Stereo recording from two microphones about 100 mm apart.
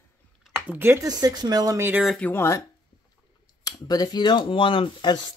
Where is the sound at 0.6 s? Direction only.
20° right (ahead or behind).